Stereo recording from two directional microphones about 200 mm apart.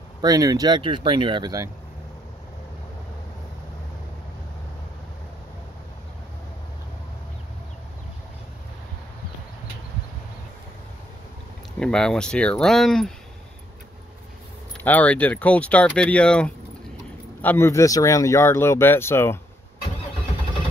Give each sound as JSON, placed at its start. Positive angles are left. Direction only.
{"t": 0.2, "sound": "speech", "side_deg": -15}
{"t": 11.8, "sound": "speech", "side_deg": 5}
{"t": 14.8, "sound": "speech", "side_deg": 10}